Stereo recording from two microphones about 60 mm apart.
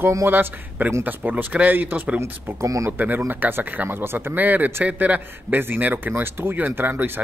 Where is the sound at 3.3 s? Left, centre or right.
Right.